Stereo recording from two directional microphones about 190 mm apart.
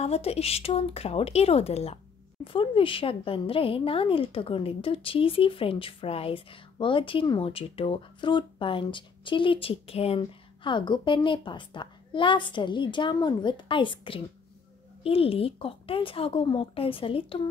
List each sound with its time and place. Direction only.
0.0 s a woman's voice: 30° left (ahead or behind)